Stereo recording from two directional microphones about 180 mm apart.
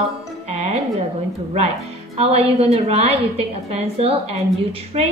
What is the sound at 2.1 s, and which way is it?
A woman's voice, 35° right (ahead or behind).